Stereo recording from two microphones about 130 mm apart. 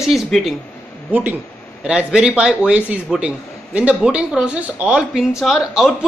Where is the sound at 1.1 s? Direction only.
15° right (ahead or behind).